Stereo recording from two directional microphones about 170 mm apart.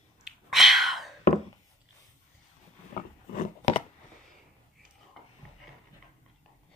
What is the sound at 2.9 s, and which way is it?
Scissors, 45° left (ahead or behind).